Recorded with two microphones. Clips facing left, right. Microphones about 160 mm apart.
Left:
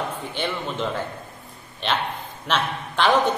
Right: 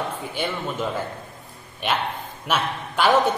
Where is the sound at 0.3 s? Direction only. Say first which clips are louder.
Even; 10° right (ahead or behind).